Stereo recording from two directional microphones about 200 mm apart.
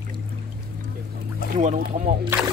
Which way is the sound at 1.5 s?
35° right (ahead or behind).